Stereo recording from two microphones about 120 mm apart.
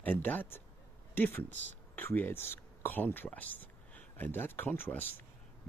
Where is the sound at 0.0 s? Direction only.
15° left (ahead or behind).